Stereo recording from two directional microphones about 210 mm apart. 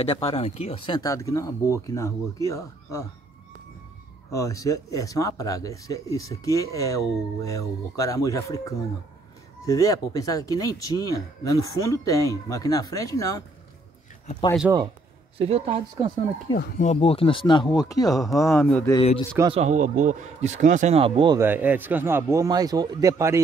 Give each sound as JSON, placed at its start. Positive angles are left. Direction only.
{"t": 0.0, "sound": "speech", "side_deg": 30}
{"t": 4.3, "sound": "speech", "side_deg": 15}
{"t": 14.7, "sound": "a man's voice", "side_deg": -10}
{"t": 15.3, "sound": "speech", "side_deg": -30}
{"t": 16.5, "sound": "speech", "side_deg": 35}
{"t": 18.9, "sound": "speech", "side_deg": 25}
{"t": 19.5, "sound": "a man's voice", "side_deg": -35}
{"t": 21.4, "sound": "a man's voice", "side_deg": -10}